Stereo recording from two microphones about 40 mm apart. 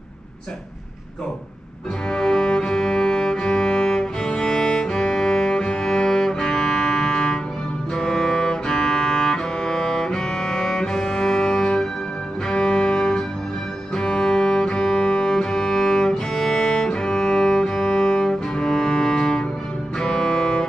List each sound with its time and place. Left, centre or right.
2.0 s music: centre